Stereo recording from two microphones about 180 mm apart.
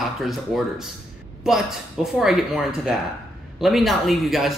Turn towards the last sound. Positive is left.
turn(degrees=0)  # may be behind; listen again after turning